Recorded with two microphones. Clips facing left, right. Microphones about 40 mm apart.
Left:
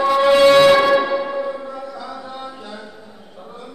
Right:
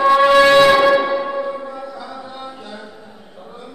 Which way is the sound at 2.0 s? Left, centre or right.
Centre.